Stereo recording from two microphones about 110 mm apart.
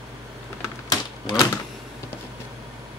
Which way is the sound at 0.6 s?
35° left (ahead or behind).